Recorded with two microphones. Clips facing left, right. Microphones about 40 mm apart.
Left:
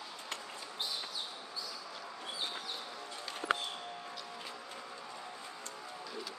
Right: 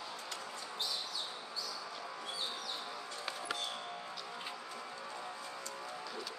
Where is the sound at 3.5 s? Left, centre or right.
Left.